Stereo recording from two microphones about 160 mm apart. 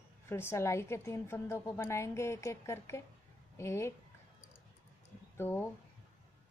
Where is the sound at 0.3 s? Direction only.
15° left (ahead or behind).